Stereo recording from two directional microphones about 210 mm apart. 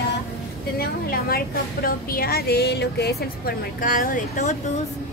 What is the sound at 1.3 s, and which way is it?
Speech, 45° left (ahead or behind).